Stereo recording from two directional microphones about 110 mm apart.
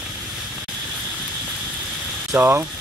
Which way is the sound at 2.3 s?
20° right (ahead or behind).